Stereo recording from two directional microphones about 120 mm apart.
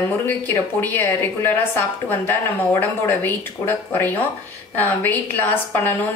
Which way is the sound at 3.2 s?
15° left (ahead or behind).